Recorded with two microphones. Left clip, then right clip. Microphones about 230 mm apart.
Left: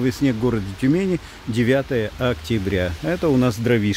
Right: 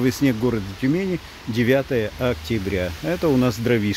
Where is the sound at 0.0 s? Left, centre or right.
Centre.